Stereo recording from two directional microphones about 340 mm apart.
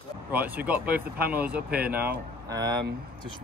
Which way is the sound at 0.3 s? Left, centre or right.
Centre.